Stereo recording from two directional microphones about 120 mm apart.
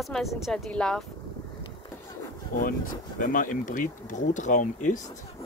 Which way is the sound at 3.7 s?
90° left.